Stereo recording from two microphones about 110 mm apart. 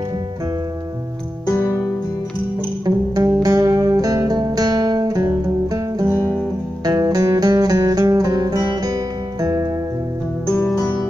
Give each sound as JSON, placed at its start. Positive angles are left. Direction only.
{"t": 1.5, "sound": "music", "side_deg": 30}
{"t": 2.8, "sound": "music", "side_deg": -35}
{"t": 6.1, "sound": "music", "side_deg": 20}
{"t": 6.8, "sound": "music", "side_deg": -35}